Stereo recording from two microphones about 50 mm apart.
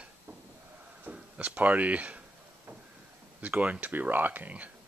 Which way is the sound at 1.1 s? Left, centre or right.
Right.